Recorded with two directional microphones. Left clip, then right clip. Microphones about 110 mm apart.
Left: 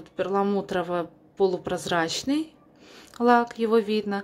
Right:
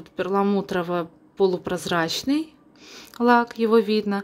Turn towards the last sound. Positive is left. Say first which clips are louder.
# right 3 dB
turn(degrees=-20)  # may be behind; listen again after turning